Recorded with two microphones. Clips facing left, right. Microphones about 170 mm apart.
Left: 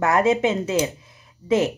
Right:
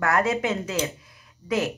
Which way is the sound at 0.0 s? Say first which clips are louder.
Left 5 dB; 20° left (ahead or behind).